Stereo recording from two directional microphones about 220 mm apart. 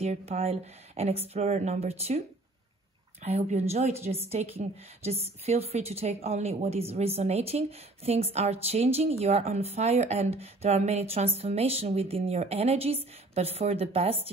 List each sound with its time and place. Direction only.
0.0 s speech: 30° right (ahead or behind)